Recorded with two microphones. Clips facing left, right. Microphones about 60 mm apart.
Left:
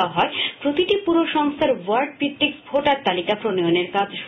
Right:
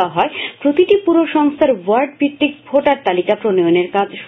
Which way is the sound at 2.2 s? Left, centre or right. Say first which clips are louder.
Right 7 dB; right.